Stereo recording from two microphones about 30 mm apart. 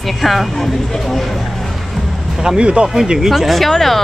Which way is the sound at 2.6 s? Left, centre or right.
Right.